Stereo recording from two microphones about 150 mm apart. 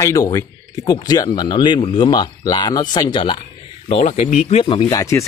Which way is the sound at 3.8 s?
45° left (ahead or behind).